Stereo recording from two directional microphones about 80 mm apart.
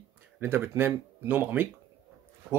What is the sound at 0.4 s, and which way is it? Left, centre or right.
Speech, right.